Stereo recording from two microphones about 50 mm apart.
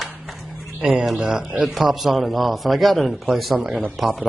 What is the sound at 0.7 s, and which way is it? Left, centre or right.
Speech, centre.